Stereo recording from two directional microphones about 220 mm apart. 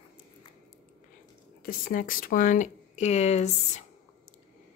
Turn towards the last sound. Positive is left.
turn(degrees=30)  # may be behind; listen again after turning